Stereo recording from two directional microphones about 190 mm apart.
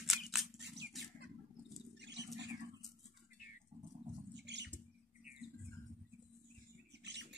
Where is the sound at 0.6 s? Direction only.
65° right (ahead or behind).